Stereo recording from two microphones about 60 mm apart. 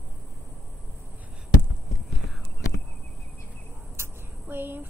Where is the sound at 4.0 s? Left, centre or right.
Right.